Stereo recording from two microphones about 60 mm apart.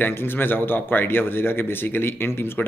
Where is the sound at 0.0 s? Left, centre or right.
Left.